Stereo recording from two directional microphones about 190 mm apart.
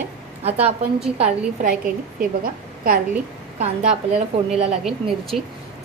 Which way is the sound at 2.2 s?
50° right (ahead or behind).